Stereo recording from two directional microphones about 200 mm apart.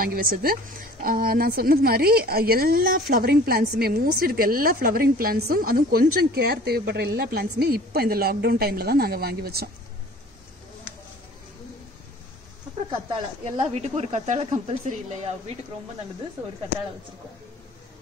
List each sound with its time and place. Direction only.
0.0 s a woman's voice: 45° right (ahead or behind)
13.4 s speech: 30° right (ahead or behind)